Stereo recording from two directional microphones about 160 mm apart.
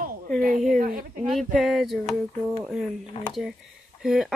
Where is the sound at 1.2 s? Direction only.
Centre (ahead or behind).